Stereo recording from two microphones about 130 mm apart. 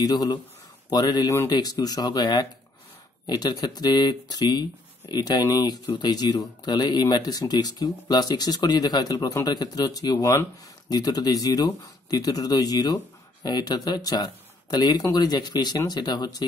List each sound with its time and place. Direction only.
0.0 s speech: 30° left (ahead or behind)